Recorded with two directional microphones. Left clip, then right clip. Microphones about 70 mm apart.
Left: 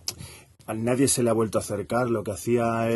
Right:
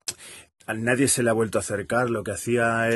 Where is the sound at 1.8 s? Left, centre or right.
Left.